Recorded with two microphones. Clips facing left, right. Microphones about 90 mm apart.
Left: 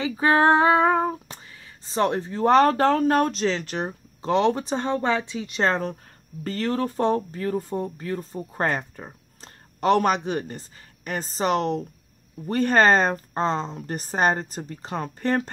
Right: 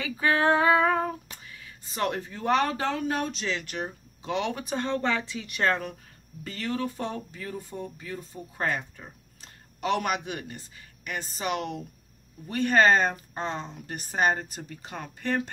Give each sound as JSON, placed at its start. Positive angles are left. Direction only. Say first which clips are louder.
{"t": 0.0, "sound": "female singing", "louder": "left 5 dB", "side_deg": 30}